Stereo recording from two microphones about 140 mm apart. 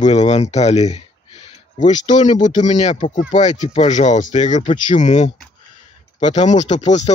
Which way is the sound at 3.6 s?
50° left (ahead or behind).